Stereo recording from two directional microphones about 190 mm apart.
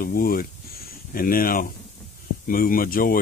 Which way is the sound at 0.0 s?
50° left (ahead or behind).